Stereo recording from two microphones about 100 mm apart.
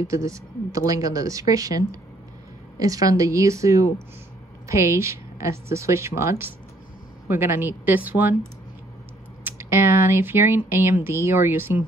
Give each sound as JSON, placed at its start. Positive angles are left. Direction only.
{"t": 0.0, "sound": "a woman's voice", "side_deg": -30}
{"t": 9.4, "sound": "a woman's voice", "side_deg": -25}